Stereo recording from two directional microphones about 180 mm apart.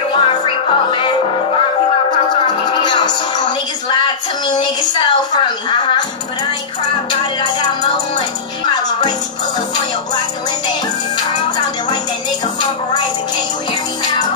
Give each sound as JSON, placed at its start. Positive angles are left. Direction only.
{"t": 0.1, "sound": "music", "side_deg": 30}
{"t": 2.7, "sound": "music", "side_deg": 25}
{"t": 3.9, "sound": "a sound", "side_deg": 25}
{"t": 11.1, "sound": "music", "side_deg": 25}